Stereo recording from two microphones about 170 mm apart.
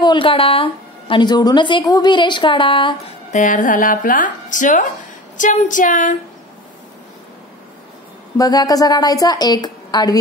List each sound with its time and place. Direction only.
0.0 s a woman's voice: 30° left (ahead or behind)
3.3 s speech: 50° left (ahead or behind)
8.4 s a woman's voice: 20° left (ahead or behind)